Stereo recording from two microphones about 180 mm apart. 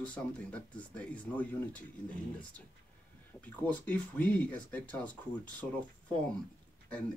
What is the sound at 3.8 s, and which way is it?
Speech, 10° left (ahead or behind).